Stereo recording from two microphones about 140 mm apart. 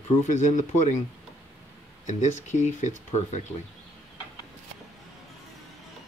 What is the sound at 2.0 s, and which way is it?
Speech, 60° left (ahead or behind).